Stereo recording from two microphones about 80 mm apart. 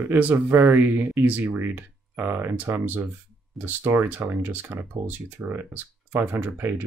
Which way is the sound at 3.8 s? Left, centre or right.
Right.